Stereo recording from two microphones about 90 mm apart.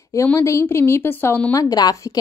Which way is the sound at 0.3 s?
30° left (ahead or behind).